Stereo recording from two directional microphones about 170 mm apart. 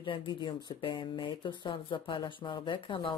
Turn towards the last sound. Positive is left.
turn(degrees=30)  # may be behind; listen again after turning